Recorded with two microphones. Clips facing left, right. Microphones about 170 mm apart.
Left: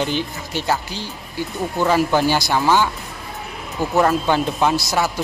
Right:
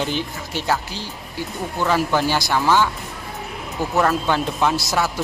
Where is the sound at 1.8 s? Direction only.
10° left (ahead or behind).